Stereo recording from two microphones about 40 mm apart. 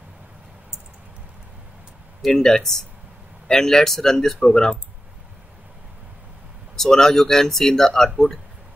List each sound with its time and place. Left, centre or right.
2.2 s speech: centre
6.8 s speech: centre